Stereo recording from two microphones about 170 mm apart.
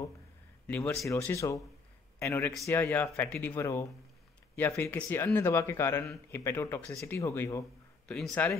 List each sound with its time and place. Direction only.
0.7 s a man's voice: 10° left (ahead or behind)
8.1 s speech: 5° left (ahead or behind)